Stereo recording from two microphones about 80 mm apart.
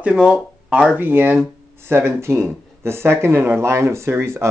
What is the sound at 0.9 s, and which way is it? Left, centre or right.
Speech, right.